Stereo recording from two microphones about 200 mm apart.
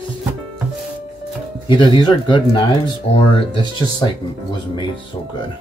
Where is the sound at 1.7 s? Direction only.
25° left (ahead or behind).